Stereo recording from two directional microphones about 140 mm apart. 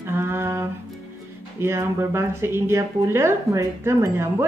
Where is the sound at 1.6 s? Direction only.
15° right (ahead or behind).